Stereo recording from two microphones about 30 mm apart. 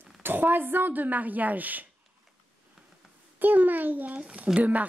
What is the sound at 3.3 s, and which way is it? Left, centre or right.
Speech, right.